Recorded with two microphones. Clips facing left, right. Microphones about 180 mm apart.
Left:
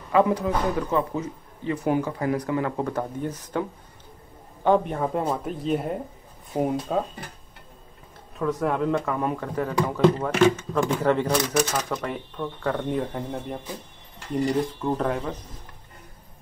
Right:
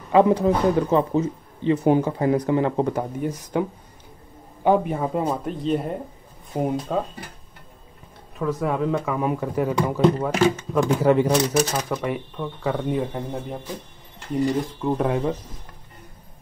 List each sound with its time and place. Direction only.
0.1 s speech: 25° right (ahead or behind)
2.9 s speech: 10° right (ahead or behind)
4.6 s speech: 5° right (ahead or behind)
8.4 s speech: centre (ahead or behind)
11.4 s speech: 35° right (ahead or behind)
11.7 s speech: 5° right (ahead or behind)